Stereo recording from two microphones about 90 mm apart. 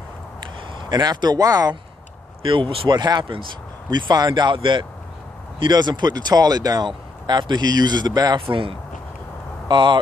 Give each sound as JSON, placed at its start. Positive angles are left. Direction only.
{"t": 0.7, "sound": "speech", "side_deg": -50}
{"t": 2.4, "sound": "speech", "side_deg": -75}
{"t": 2.9, "sound": "speech", "side_deg": -50}
{"t": 3.9, "sound": "speech", "side_deg": -50}
{"t": 4.6, "sound": "speech", "side_deg": -65}
{"t": 8.5, "sound": "speech", "side_deg": -75}
{"t": 9.7, "sound": "speech", "side_deg": -60}